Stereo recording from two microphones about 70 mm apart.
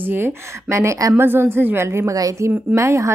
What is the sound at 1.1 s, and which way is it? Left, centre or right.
Speech, right.